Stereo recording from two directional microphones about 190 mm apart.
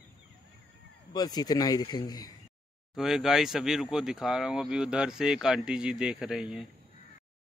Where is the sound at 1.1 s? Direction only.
20° left (ahead or behind).